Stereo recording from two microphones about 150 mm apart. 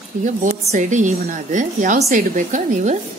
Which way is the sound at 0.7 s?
55° right (ahead or behind).